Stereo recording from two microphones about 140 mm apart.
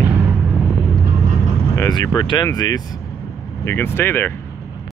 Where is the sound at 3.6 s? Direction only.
15° left (ahead or behind).